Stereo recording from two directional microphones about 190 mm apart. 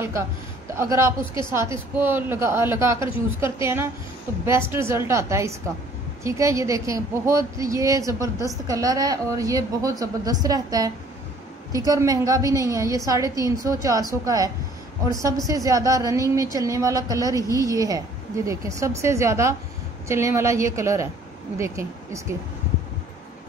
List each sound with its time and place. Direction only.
0.7 s a woman's voice: 15° right (ahead or behind)